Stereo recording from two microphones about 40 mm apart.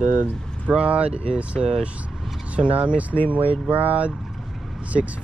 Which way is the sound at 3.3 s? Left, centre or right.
Right.